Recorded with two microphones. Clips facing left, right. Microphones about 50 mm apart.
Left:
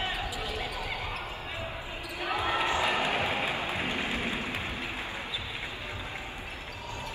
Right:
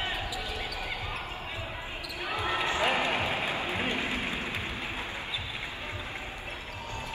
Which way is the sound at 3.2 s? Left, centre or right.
Left.